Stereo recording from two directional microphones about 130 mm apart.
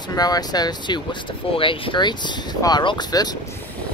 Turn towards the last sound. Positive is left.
turn(degrees=30)  # may be behind; listen again after turning